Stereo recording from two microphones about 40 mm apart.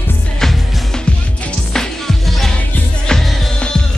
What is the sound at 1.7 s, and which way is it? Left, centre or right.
Music, centre.